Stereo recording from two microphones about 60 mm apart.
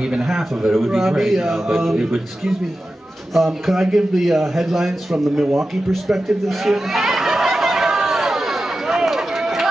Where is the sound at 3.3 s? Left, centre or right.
Centre.